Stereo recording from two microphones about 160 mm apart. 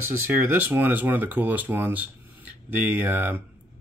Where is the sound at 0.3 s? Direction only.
10° right (ahead or behind).